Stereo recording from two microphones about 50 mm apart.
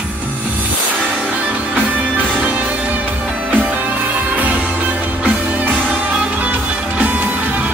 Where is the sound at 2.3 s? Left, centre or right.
Right.